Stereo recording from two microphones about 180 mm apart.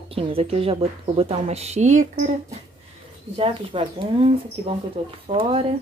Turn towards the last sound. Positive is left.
turn(degrees=-30)  # may be behind; listen again after turning